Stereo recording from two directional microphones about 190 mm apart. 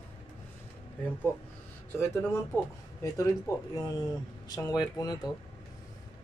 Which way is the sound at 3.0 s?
15° left (ahead or behind).